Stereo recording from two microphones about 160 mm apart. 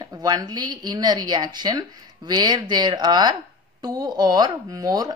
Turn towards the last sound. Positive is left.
turn(degrees=-25)  # may be behind; listen again after turning